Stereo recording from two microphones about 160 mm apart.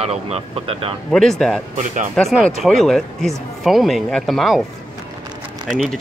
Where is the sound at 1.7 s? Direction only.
50° right (ahead or behind).